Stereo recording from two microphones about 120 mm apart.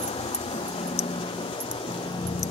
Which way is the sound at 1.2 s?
45° left (ahead or behind).